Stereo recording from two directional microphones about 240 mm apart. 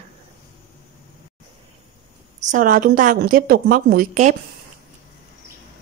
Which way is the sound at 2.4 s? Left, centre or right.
Right.